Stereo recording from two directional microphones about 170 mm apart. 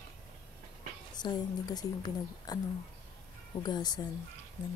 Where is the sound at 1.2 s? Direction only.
20° left (ahead or behind).